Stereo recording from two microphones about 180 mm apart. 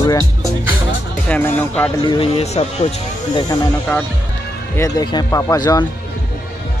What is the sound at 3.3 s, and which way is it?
Speech, 20° left (ahead or behind).